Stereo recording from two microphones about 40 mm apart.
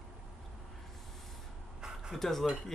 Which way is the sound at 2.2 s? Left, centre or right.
Centre.